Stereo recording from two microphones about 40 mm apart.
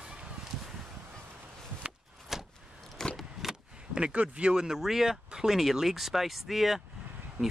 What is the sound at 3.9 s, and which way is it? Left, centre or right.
Speech, right.